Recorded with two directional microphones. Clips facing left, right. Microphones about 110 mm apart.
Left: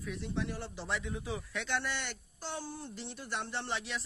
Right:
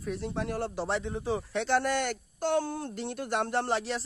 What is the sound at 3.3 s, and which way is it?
Speech, 45° right (ahead or behind).